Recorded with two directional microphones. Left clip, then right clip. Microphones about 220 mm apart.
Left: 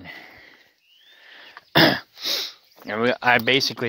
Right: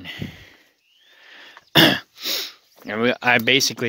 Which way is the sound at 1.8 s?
45° right (ahead or behind).